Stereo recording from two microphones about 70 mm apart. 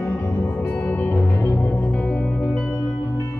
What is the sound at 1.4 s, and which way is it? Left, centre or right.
Music, left.